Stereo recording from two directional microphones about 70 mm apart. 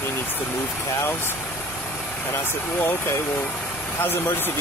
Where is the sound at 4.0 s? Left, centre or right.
Left.